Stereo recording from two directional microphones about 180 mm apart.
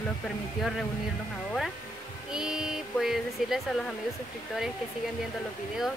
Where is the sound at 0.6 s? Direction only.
Centre (ahead or behind).